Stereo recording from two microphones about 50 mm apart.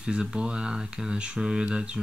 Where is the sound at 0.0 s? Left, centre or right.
Centre.